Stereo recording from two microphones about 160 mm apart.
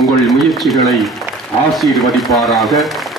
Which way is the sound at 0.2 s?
Centre (ahead or behind).